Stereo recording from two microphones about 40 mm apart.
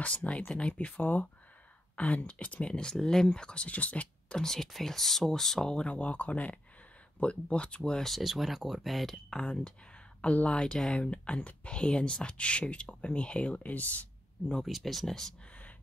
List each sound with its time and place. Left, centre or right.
0.0 s speech: left
0.9 s speech: left
2.0 s speech: left; by 3.3 s centre
3.3 s speech: left
4.4 s speech: centre
5.8 s speech: left
8.1 s speech: centre
9.3 s speech: centre
10.2 s speech: left
10.6 s speech: left
14.6 s speech: centre